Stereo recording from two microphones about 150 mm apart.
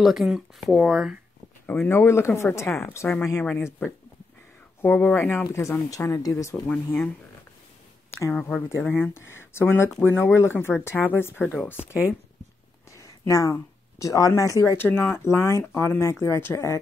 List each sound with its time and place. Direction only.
0.0 s speech: centre (ahead or behind)
1.7 s speech: 15° left (ahead or behind)
8.4 s speech: 5° left (ahead or behind)
8.6 s speech: 15° left (ahead or behind)
13.3 s speech: 20° left (ahead or behind)